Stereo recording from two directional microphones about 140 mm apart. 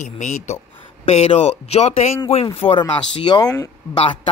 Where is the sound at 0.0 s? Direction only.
60° left (ahead or behind); by 3.5 s 35° left (ahead or behind).